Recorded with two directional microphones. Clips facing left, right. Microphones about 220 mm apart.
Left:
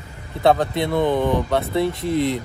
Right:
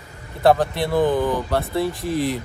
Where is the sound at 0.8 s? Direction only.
25° left (ahead or behind).